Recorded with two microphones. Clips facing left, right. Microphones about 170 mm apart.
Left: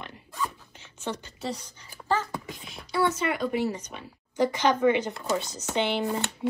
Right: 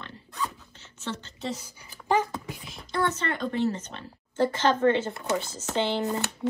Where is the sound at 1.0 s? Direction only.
15° left (ahead or behind).